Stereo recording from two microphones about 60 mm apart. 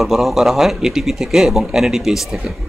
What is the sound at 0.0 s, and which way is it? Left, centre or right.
Speech, centre.